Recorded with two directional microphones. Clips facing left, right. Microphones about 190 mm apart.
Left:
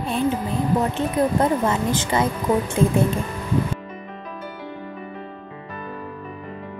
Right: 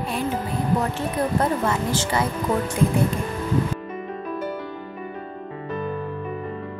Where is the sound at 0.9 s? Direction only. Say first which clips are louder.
Left 3 dB; 20° left (ahead or behind).